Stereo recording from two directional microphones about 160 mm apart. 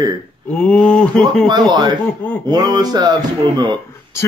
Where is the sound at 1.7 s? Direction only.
25° right (ahead or behind).